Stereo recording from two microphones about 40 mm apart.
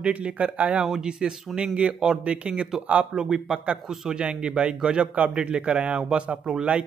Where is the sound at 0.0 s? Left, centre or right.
Right.